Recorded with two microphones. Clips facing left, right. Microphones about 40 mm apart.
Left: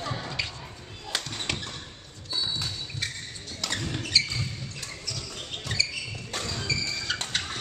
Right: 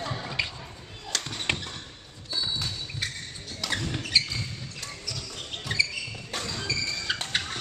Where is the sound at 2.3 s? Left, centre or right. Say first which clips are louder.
Even; centre.